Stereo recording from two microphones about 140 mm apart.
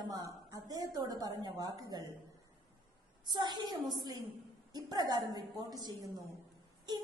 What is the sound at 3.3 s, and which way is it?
A woman's voice, 30° right (ahead or behind).